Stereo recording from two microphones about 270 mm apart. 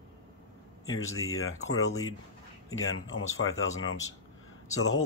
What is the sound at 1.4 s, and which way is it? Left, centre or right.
Speech, left.